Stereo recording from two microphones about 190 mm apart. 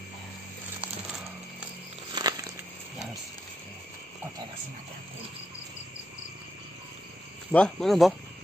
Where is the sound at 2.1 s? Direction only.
20° right (ahead or behind).